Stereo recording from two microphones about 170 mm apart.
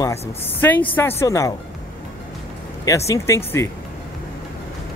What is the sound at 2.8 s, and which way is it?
Speech, 20° left (ahead or behind).